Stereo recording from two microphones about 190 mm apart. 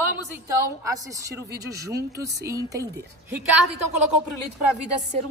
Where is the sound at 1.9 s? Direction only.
15° right (ahead or behind).